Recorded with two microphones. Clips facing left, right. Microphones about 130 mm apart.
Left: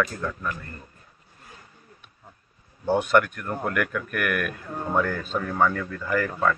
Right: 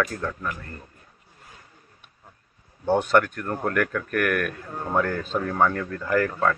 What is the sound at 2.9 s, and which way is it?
Speech, 10° left (ahead or behind).